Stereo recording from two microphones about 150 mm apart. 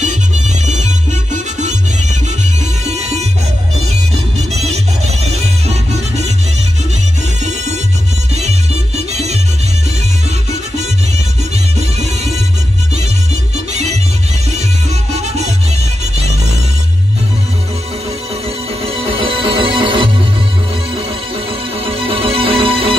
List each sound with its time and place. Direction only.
0.7 s music: 50° right (ahead or behind)
8.4 s music: 45° right (ahead or behind)
15.1 s music: 50° right (ahead or behind)
18.9 s music: 40° right (ahead or behind)
21.8 s music: 40° right (ahead or behind)